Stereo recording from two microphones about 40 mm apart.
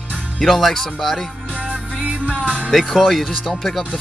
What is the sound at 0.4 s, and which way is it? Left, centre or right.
Speech, centre.